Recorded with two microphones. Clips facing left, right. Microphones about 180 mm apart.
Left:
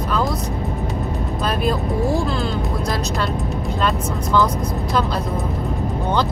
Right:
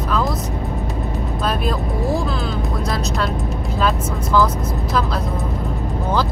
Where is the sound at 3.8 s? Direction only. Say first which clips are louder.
Right 2 dB; centre (ahead or behind).